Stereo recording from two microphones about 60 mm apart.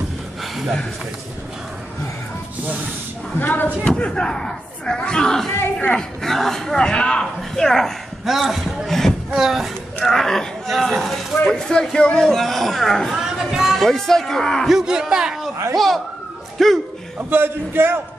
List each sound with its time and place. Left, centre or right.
3.3 s speech: left
3.9 s speech: centre
8.3 s speech: centre
10.0 s speech: centre
13.1 s speech: centre
13.7 s speech: centre
14.7 s a man's voice: centre
15.7 s speech: centre
17.3 s a man's voice: right